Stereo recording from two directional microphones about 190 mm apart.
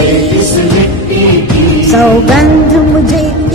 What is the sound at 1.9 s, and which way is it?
Music, centre (ahead or behind).